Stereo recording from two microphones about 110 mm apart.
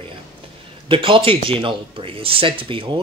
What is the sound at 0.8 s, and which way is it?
Speech, 50° right (ahead or behind).